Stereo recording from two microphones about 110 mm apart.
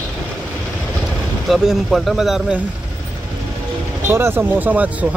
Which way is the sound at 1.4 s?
Centre (ahead or behind).